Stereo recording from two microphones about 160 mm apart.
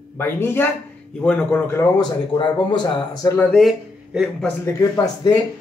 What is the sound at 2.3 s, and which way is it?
Speech, 30° left (ahead or behind).